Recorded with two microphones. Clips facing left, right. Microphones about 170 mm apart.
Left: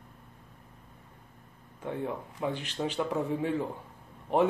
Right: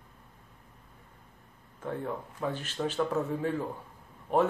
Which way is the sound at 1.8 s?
15° left (ahead or behind).